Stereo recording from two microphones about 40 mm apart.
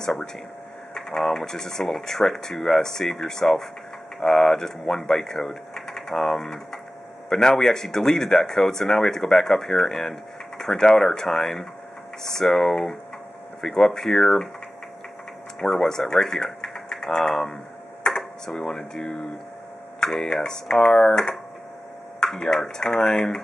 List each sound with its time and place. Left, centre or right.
0.9 s speech: centre
15.6 s speech: centre